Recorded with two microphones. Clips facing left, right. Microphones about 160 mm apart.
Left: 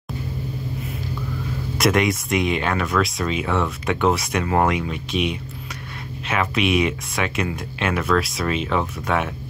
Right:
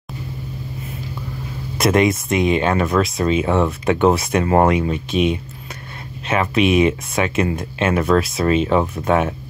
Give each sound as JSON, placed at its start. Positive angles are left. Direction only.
{"t": 1.8, "sound": "speech", "side_deg": -25}